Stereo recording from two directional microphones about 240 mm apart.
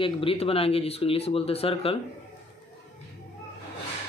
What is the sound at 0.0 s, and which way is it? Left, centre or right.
Speech, left.